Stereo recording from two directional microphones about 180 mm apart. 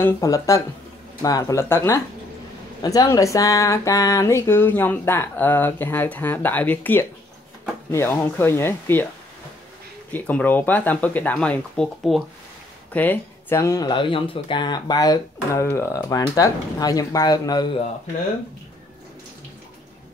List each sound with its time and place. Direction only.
0.0 s speech: 20° left (ahead or behind)
10.1 s speech: 10° left (ahead or behind); by 17.8 s 25° left (ahead or behind)